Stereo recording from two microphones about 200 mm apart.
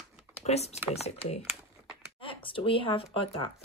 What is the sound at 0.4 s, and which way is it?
Speech, 30° left (ahead or behind).